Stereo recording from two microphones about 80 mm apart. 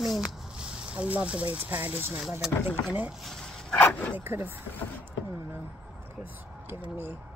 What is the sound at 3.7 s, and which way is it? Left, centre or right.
Dog, centre.